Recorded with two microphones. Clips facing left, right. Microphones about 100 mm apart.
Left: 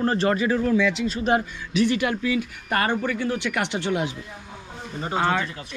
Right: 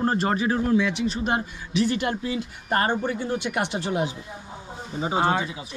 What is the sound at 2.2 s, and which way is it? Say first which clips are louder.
Speech: left 4 dB; 90° left.